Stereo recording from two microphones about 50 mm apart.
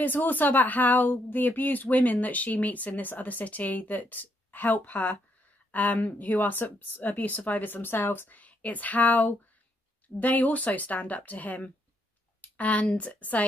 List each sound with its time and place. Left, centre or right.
0.0 s speech: left